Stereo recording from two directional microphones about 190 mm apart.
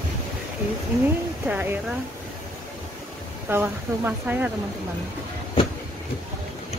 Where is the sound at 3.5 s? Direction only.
10° right (ahead or behind).